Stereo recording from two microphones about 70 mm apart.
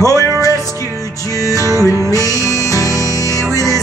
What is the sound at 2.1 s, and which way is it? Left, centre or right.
Music, left.